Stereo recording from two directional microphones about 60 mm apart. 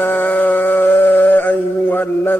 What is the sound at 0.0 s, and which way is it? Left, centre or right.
Mantra, left.